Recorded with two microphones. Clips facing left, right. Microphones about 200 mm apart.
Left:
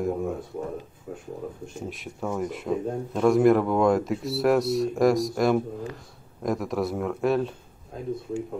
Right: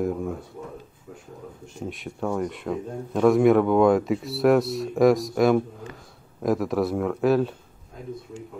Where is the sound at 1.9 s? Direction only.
Centre (ahead or behind).